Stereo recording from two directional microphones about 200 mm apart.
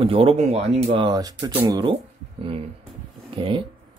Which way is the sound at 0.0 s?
25° right (ahead or behind).